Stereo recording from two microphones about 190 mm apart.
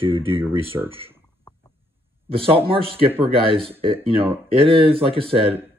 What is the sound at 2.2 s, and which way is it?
Speech, 30° right (ahead or behind).